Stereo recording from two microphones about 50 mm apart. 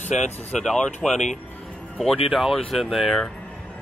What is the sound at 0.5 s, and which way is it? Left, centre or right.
Speech, centre.